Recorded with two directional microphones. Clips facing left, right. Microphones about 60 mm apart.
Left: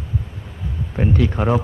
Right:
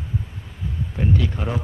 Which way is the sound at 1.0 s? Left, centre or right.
Left.